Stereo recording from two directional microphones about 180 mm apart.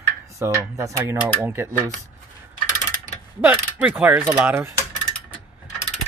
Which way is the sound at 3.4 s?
10° right (ahead or behind).